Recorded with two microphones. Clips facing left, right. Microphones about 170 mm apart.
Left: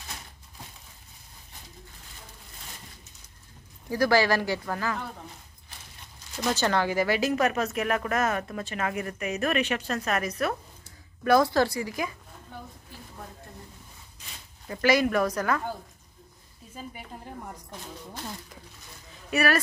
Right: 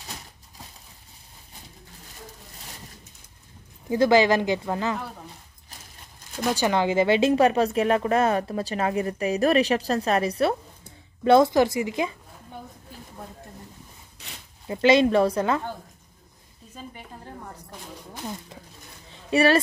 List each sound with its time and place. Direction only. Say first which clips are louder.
3.9 s speech: right 4 dB; 20° right (ahead or behind)
6.3 s speech: right 3 dB; 15° right (ahead or behind)
14.7 s speech: right 5 dB; 25° right (ahead or behind)
16.7 s speech: even; 10° left (ahead or behind)
18.1 s speech: right 7 dB; 15° right (ahead or behind)
19.3 s speech: right 6 dB; 30° right (ahead or behind)